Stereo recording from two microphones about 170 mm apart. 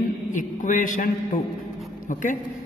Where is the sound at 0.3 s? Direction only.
50° left (ahead or behind).